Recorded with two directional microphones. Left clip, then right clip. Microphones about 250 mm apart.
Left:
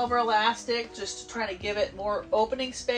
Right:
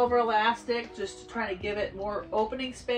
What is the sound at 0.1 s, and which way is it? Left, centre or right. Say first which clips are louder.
Speech: left 1 dB; centre.